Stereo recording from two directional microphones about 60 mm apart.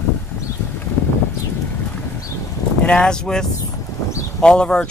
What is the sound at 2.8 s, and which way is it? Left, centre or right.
Speech, centre.